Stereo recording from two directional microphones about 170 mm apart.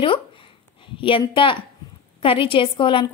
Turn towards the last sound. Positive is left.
turn(degrees=30)  # may be behind; listen again after turning